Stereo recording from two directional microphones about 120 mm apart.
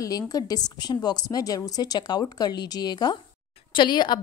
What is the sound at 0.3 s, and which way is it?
A woman's voice, 30° left (ahead or behind).